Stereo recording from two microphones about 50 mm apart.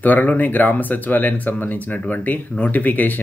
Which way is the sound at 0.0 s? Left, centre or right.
Left.